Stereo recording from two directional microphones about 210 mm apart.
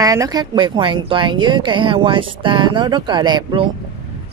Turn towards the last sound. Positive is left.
turn(degrees=-20)  # may be behind; listen again after turning